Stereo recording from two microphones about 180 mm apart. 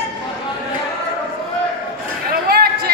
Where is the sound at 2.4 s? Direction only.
60° right (ahead or behind).